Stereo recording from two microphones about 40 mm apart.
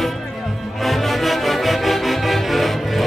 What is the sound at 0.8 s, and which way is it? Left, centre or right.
Music, centre.